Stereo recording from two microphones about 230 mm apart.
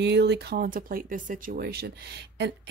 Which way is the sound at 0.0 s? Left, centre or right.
Right.